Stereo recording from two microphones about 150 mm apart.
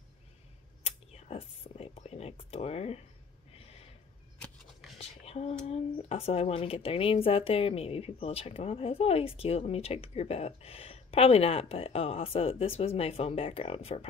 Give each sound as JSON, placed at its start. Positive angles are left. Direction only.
{"t": 0.8, "sound": "whispering", "side_deg": 45}
{"t": 3.5, "sound": "a sound", "side_deg": 40}
{"t": 5.2, "sound": "female singing", "side_deg": 40}
{"t": 5.7, "sound": "speech", "side_deg": 40}